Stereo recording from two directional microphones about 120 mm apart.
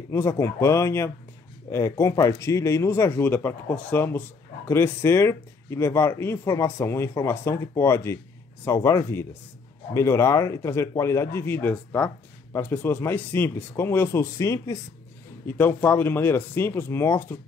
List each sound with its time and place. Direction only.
0.1 s speech: 25° left (ahead or behind)